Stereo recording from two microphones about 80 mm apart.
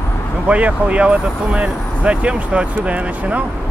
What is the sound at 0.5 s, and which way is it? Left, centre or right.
Speech, centre.